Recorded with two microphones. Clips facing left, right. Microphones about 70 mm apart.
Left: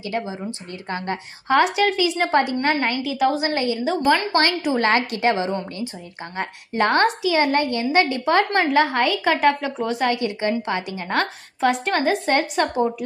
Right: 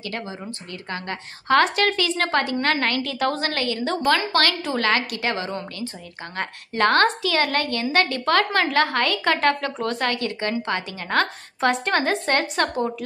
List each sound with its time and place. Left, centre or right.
0.1 s a woman's voice: centre
0.8 s a woman's voice: left
1.1 s a woman's voice: centre
3.0 s a woman's voice: centre
3.8 s a woman's voice: centre
4.3 s a woman's voice: left
6.3 s a woman's voice: centre